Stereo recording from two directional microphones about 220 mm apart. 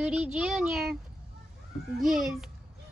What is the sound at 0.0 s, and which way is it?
Speech, 5° right (ahead or behind).